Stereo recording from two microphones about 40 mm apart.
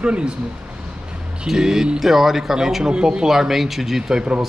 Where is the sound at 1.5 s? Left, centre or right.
Centre.